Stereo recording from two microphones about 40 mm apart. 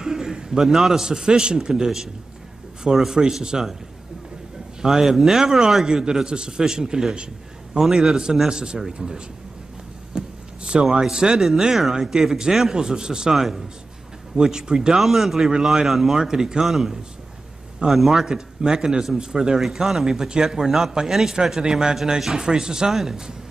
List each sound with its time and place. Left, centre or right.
0.0 s a man's voice: centre
4.8 s a man's voice: centre
13.3 s a man's voice: centre
15.0 s speech: centre